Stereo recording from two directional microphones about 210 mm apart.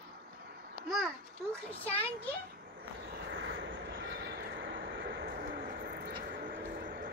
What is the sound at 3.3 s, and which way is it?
Vehicle, 60° right (ahead or behind).